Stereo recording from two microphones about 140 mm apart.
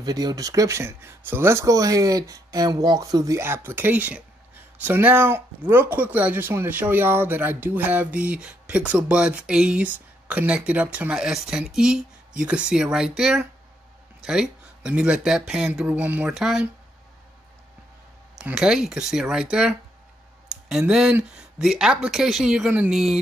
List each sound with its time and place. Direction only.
0.0 s speech: 30° right (ahead or behind); by 16.6 s 5° right (ahead or behind)
18.4 s speech: 5° right (ahead or behind)
20.4 s speech: 5° right (ahead or behind)